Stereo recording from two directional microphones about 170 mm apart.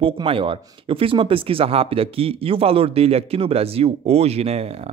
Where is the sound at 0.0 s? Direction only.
30° right (ahead or behind).